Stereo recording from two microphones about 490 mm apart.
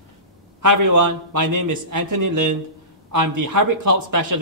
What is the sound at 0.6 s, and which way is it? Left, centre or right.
A man's voice, right.